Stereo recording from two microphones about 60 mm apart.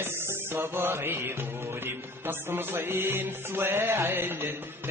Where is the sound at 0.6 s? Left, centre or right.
Right.